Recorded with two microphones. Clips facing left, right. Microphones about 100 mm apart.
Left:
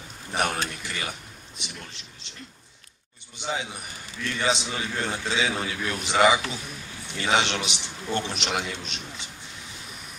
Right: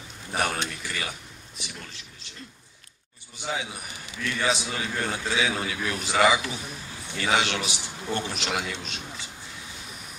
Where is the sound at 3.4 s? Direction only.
20° left (ahead or behind).